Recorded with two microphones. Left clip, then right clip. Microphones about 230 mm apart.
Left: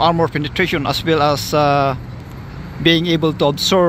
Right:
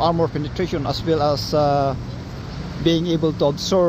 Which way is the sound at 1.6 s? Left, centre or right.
Centre.